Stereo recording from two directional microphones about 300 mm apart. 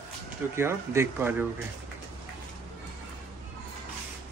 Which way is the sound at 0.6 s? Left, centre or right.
Centre.